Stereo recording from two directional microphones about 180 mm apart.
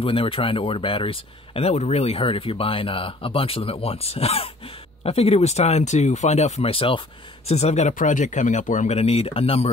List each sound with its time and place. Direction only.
0.0 s speech: 30° left (ahead or behind)